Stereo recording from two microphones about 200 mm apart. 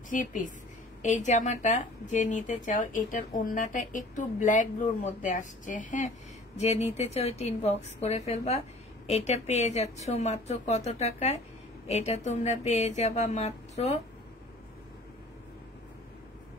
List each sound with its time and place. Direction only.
0.1 s a woman's voice: 40° left (ahead or behind)
12.4 s a woman's voice: 35° left (ahead or behind)